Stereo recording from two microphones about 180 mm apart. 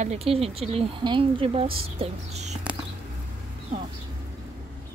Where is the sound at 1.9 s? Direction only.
35° right (ahead or behind).